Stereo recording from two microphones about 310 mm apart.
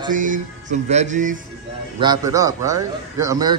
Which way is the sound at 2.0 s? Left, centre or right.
Centre.